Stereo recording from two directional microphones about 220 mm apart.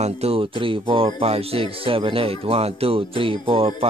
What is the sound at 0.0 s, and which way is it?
Speech, 25° right (ahead or behind).